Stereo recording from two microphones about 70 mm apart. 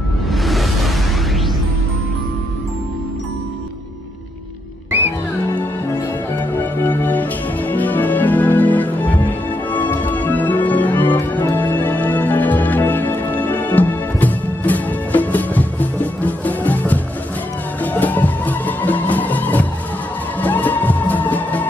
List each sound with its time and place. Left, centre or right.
0.3 s music: centre
6.8 s music: left